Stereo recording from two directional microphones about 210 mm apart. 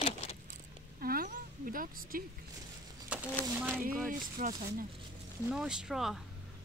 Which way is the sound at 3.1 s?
5° right (ahead or behind).